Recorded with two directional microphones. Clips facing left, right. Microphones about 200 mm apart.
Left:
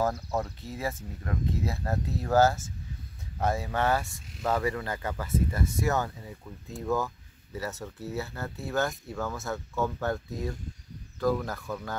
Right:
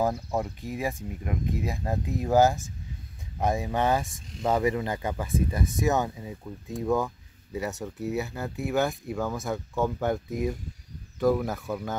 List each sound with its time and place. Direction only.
0.0 s speech: 15° right (ahead or behind)